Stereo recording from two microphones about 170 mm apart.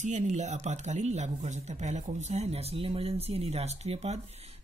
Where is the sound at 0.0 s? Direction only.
45° right (ahead or behind).